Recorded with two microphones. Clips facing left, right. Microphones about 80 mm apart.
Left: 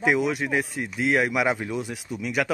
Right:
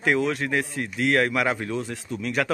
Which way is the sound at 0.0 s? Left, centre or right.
Centre.